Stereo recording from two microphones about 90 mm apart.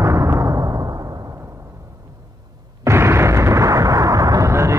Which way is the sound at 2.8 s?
30° right (ahead or behind).